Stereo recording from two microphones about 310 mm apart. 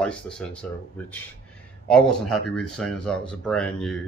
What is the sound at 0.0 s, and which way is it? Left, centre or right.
Speech, centre.